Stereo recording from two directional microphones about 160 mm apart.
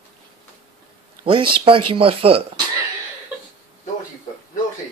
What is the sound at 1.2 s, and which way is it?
Speech, 35° right (ahead or behind).